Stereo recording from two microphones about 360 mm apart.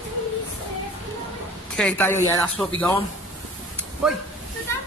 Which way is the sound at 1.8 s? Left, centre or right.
Centre.